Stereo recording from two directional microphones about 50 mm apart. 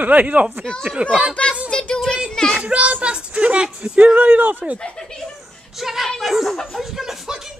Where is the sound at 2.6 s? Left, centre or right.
Right.